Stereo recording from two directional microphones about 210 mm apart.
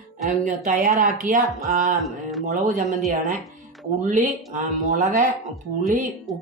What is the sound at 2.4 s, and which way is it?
Speech, 40° right (ahead or behind).